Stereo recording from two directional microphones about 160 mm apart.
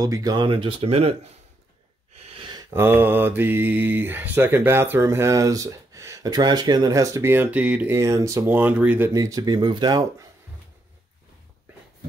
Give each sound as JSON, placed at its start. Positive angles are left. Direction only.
{"t": 0.0, "sound": "speech", "side_deg": -25}
{"t": 2.1, "sound": "gasp", "side_deg": -35}
{"t": 2.7, "sound": "speech", "side_deg": -15}
{"t": 9.1, "sound": "speech", "side_deg": -20}